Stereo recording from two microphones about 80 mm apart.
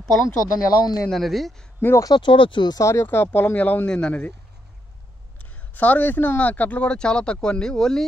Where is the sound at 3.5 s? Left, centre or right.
Centre.